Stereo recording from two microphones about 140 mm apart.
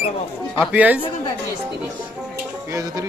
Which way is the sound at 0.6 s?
10° right (ahead or behind).